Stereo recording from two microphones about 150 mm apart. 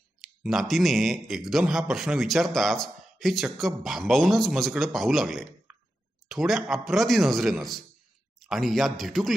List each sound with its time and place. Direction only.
0.2 s a man's voice: centre (ahead or behind)